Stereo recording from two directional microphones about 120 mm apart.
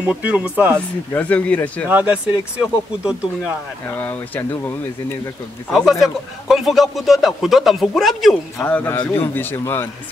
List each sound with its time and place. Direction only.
0.0 s speech: 10° right (ahead or behind)
0.7 s speech: 10° left (ahead or behind)
1.9 s speech: 10° right (ahead or behind)
4.4 s speech: 15° left (ahead or behind)
5.7 s speech: centre (ahead or behind)
8.6 s speech: 15° left (ahead or behind)